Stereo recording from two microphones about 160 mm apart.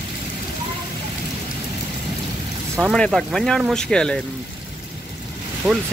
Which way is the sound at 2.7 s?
Centre (ahead or behind).